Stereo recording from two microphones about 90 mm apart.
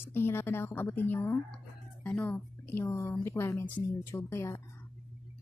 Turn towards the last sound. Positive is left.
turn(degrees=30)  # may be behind; listen again after turning